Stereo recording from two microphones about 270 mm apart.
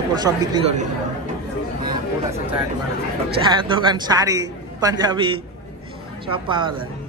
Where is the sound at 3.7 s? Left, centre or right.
Centre.